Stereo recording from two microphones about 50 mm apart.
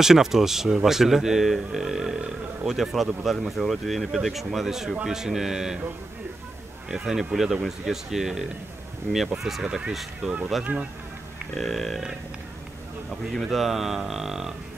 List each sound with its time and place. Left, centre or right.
0.0 s speech: centre
6.9 s speech: centre
10.2 s speech: centre
10.6 s speech: right
11.5 s speech: centre
13.3 s speech: centre